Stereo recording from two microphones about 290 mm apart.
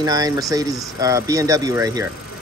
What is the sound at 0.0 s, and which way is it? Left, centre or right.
Speech, centre.